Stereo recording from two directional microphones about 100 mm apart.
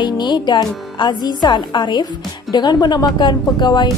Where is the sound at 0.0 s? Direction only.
50° left (ahead or behind).